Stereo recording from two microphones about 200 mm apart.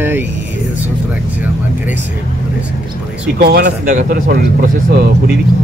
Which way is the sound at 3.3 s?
55° right (ahead or behind).